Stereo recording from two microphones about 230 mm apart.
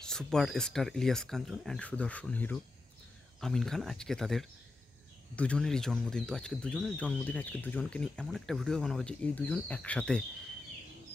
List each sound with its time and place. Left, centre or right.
0.0 s speech: centre